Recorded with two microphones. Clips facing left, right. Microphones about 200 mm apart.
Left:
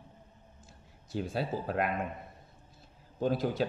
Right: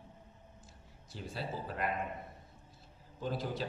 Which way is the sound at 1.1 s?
55° left (ahead or behind).